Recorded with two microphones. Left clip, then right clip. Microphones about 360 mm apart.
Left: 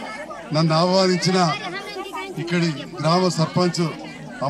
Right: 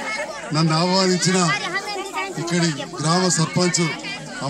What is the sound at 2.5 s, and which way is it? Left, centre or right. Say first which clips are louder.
A man's voice: left 2 dB; centre.